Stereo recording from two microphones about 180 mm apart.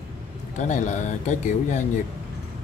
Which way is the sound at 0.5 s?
40° left (ahead or behind).